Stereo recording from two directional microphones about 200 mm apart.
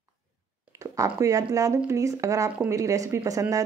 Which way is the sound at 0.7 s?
15° right (ahead or behind).